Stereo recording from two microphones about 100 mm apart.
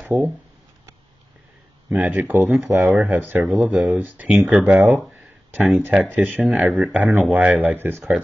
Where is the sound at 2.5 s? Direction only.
Centre (ahead or behind).